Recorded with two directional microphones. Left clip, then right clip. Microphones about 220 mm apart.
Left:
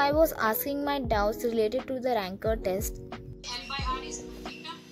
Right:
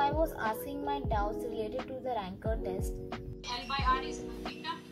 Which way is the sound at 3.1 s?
Centre (ahead or behind).